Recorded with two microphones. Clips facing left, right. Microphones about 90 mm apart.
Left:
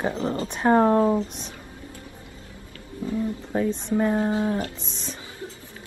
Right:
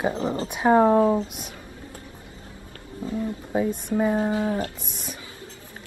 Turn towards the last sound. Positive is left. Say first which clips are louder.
# even
turn(degrees=-15)  # may be behind; listen again after turning